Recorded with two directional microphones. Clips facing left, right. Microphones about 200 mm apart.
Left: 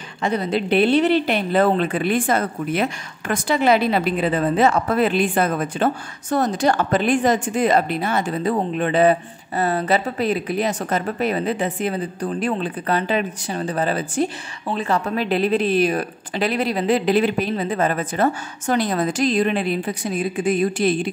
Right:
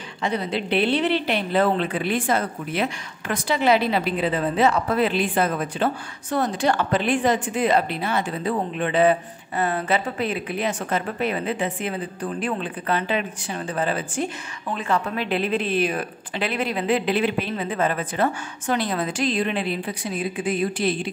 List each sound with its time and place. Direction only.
0.2 s a woman's voice: 45° left (ahead or behind)